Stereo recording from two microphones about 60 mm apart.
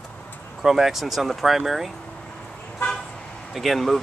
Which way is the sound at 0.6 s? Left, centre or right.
Centre.